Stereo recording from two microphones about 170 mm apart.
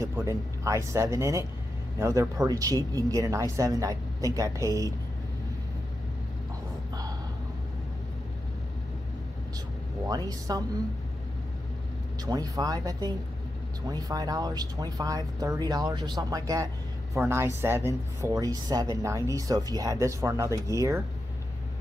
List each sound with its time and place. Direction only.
0.0 s speech: 15° right (ahead or behind)
10.0 s speech: 20° right (ahead or behind)
12.3 s speech: 20° right (ahead or behind)